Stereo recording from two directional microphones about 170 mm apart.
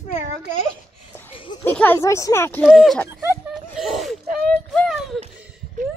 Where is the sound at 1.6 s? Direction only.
10° left (ahead or behind).